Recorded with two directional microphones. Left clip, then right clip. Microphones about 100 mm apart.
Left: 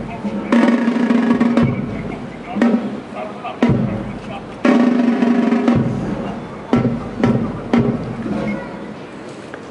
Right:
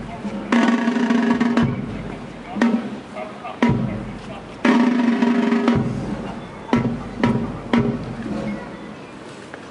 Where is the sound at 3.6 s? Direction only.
25° right (ahead or behind).